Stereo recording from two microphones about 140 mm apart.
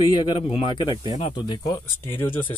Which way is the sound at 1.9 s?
15° left (ahead or behind).